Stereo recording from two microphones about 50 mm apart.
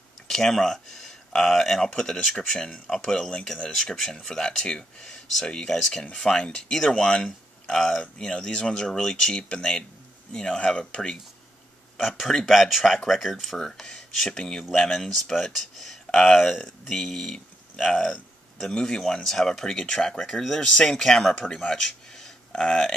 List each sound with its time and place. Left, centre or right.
0.3 s speech: centre
8.0 s speech: centre
12.0 s speech: centre
17.7 s speech: centre
18.7 s speech: centre